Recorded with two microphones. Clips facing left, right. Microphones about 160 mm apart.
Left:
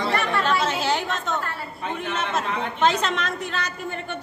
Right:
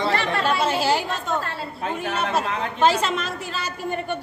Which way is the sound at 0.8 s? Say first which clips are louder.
Right 3 dB; 5° right (ahead or behind).